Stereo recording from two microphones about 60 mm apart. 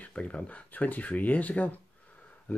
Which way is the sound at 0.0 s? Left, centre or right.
Left.